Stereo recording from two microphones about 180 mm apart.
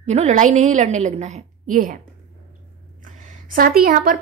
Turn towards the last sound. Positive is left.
turn(degrees=-55)  # may be behind; listen again after turning